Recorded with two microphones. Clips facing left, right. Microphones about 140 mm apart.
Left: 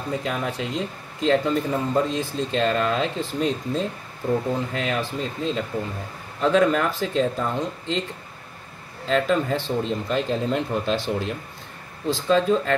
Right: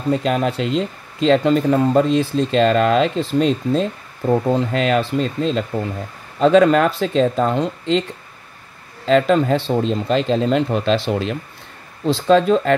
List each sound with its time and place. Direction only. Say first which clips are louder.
0.1 s speech: right 9 dB; 80° right
4.3 s speech: right 7 dB; 75° right (ahead or behind)
9.0 s speech: right 7 dB; 90° right